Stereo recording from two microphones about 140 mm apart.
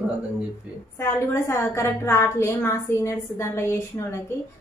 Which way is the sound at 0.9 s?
20° left (ahead or behind).